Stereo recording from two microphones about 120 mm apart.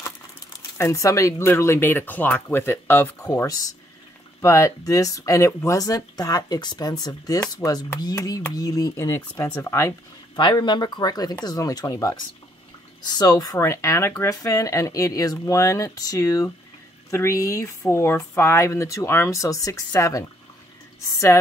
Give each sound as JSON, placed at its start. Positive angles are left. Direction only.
{"t": 0.7, "sound": "speech", "side_deg": 25}
{"t": 10.3, "sound": "speech", "side_deg": 40}